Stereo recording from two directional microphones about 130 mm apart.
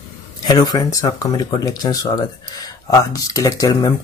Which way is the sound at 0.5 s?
30° left (ahead or behind).